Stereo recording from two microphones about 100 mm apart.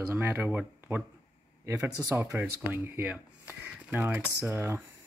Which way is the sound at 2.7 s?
15° right (ahead or behind).